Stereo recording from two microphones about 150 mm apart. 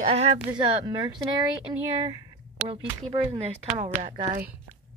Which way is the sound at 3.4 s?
45° right (ahead or behind).